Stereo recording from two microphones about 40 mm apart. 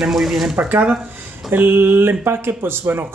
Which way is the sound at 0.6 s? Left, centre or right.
Right.